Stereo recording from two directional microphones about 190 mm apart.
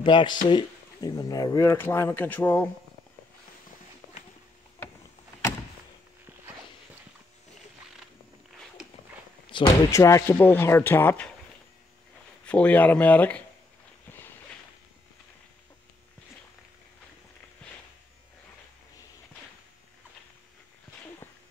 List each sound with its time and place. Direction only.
0.0 s speech: 25° left (ahead or behind); by 2.7 s 10° left (ahead or behind)
9.5 s speech: 20° left (ahead or behind)
12.4 s speech: 5° left (ahead or behind)